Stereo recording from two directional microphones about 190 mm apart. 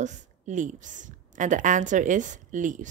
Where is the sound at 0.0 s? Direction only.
40° right (ahead or behind).